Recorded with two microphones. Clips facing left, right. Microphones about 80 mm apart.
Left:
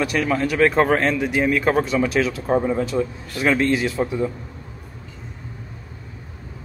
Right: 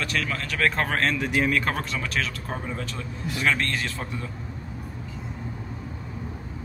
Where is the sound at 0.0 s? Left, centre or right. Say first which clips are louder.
Left 8 dB; centre.